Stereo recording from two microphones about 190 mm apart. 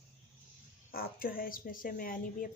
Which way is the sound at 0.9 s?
50° left (ahead or behind).